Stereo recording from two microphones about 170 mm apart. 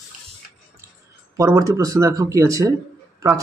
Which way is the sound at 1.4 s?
20° right (ahead or behind).